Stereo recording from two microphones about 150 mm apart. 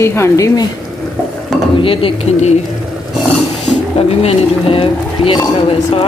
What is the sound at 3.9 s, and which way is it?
Speech, 40° left (ahead or behind).